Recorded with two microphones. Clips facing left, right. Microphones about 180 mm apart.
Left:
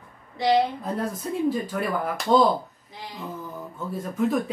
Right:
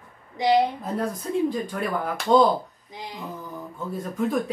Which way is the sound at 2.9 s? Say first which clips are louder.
Right 2 dB; 15° right (ahead or behind).